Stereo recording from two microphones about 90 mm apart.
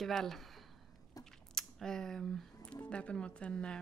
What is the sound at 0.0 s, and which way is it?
Speech, 5° left (ahead or behind).